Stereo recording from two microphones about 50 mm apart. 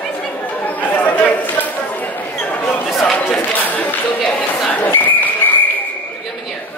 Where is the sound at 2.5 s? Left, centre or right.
Left.